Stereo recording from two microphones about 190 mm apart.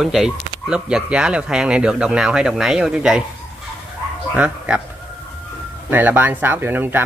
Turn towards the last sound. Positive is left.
turn(degrees=-10)  # may be behind; listen again after turning